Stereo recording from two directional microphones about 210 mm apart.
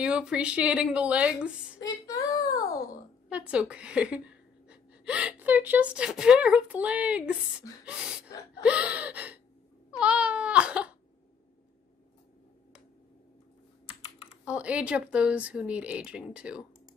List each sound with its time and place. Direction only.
0.0 s speech: 5° right (ahead or behind)
1.8 s a sound: 15° left (ahead or behind)
3.3 s speech: 5° right (ahead or behind)
8.6 s gasp: 5° right (ahead or behind)
9.8 s cat: 5° right (ahead or behind)
14.4 s speech: 5° right (ahead or behind)